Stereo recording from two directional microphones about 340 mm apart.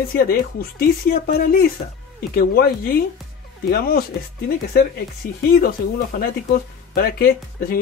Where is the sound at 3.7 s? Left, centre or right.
Left.